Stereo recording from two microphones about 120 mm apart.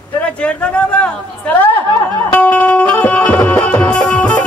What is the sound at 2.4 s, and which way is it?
Music, 10° left (ahead or behind).